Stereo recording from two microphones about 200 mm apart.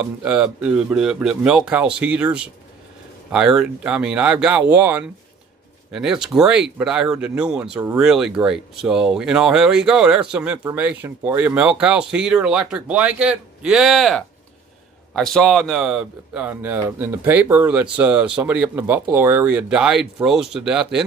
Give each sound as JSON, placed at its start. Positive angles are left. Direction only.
{"t": 0.0, "sound": "speech", "side_deg": -5}